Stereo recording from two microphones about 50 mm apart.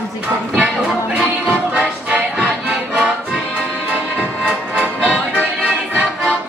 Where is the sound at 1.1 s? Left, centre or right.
Right.